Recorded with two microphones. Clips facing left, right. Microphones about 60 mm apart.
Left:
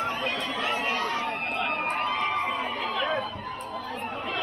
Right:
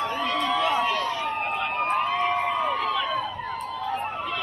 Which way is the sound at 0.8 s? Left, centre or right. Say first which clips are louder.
Right 2 dB; left.